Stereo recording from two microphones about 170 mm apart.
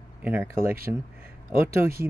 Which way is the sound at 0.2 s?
10° right (ahead or behind).